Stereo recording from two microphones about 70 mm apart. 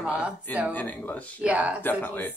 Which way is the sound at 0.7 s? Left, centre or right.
Left.